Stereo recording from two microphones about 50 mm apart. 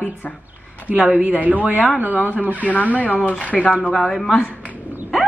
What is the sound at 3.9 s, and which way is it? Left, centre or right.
Speech, centre.